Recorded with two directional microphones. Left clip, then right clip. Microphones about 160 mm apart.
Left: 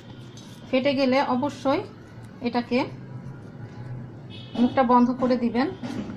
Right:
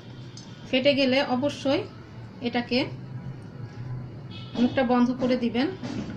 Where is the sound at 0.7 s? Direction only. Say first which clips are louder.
Even; centre (ahead or behind).